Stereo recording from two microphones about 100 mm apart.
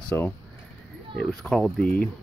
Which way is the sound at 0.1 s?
25° left (ahead or behind).